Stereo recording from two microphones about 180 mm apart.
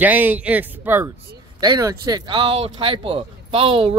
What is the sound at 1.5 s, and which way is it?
Speech, 20° right (ahead or behind).